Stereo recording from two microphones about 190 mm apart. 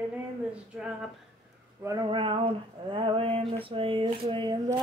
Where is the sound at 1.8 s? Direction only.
20° right (ahead or behind).